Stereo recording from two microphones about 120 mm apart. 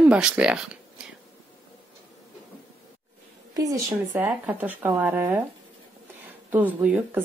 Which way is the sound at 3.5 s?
30° right (ahead or behind).